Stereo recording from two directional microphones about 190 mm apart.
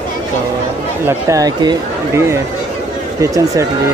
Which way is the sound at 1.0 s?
15° right (ahead or behind).